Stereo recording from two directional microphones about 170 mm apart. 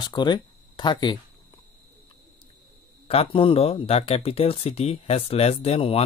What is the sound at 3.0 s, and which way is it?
Speech, 30° left (ahead or behind).